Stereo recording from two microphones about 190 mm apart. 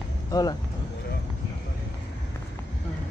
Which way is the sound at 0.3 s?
20° left (ahead or behind).